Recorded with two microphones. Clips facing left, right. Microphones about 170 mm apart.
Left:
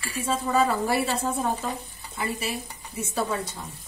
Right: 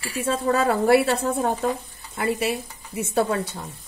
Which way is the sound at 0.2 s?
65° right (ahead or behind).